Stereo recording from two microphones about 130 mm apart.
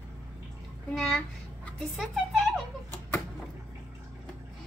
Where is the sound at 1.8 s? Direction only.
Centre (ahead or behind).